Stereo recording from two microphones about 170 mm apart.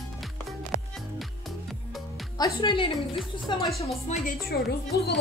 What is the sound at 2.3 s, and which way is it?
Speech, 25° left (ahead or behind).